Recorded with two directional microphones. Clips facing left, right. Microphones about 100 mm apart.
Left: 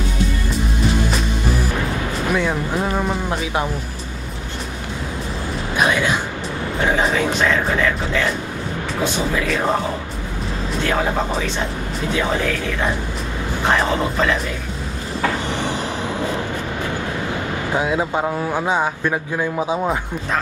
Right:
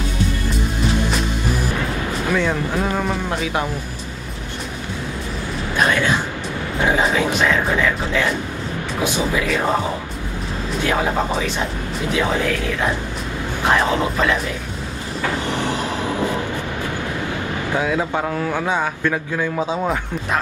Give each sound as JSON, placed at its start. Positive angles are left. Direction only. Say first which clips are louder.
{"t": 2.2, "sound": "a man's voice", "louder": "even", "side_deg": 15}
{"t": 5.8, "sound": "speech", "louder": "even", "side_deg": 10}
{"t": 6.8, "sound": "speech", "louder": "right 1 dB", "side_deg": -10}
{"t": 10.8, "sound": "speech", "louder": "right 1 dB", "side_deg": -10}
{"t": 17.7, "sound": "a man's voice", "louder": "left 1 dB", "side_deg": 20}